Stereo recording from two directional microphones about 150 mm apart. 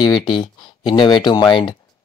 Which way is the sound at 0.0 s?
30° left (ahead or behind).